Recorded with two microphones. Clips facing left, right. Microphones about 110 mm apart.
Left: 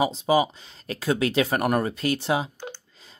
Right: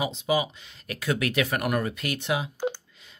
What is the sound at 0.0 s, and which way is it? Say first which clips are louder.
Speech: left 5 dB; 35° left (ahead or behind).